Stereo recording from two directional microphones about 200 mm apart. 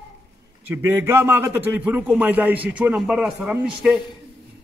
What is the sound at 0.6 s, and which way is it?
A man's voice, 10° right (ahead or behind).